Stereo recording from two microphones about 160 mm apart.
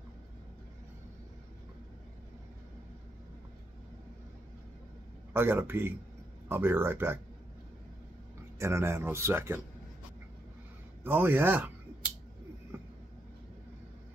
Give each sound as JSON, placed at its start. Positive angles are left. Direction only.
{"t": 5.3, "sound": "speech", "side_deg": -15}
{"t": 8.5, "sound": "speech", "side_deg": -15}
{"t": 11.1, "sound": "speech", "side_deg": -10}